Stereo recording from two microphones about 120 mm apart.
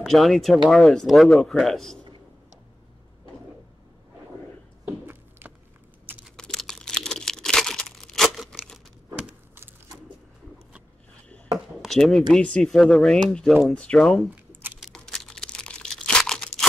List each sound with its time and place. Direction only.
0.0 s speech: centre (ahead or behind)
4.8 s a sound: 15° right (ahead or behind)
6.2 s crumpling: 5° left (ahead or behind)
11.5 s chop: centre (ahead or behind)
12.4 s speech: 10° left (ahead or behind)
14.3 s a sound: 15° right (ahead or behind)
14.8 s crumpling: centre (ahead or behind)